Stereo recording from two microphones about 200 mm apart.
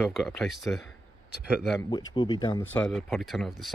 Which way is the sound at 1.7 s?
20° left (ahead or behind).